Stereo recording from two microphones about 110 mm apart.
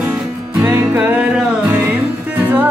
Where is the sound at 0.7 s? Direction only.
15° right (ahead or behind).